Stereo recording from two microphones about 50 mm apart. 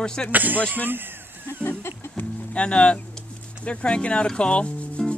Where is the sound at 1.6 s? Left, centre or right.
Left.